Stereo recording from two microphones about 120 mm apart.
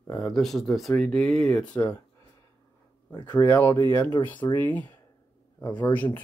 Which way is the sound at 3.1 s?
35° left (ahead or behind).